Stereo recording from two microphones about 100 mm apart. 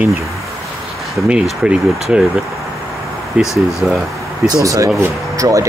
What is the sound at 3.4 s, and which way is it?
Speech, 30° left (ahead or behind).